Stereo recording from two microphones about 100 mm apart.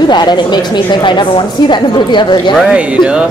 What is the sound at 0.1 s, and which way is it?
A woman's voice, 45° left (ahead or behind).